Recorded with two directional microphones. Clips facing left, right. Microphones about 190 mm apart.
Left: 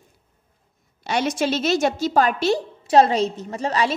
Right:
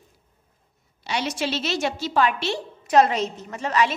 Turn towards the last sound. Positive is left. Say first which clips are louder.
# left 1 dB
turn(degrees=35)  # may be behind; listen again after turning